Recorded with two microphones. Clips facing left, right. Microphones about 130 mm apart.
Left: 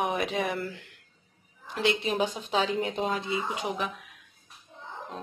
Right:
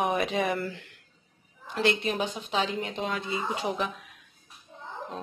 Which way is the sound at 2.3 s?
40° left (ahead or behind).